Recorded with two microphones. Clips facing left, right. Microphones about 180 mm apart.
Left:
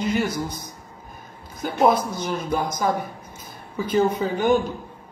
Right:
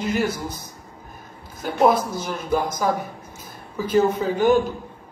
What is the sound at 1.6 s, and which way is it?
Speech, 5° right (ahead or behind).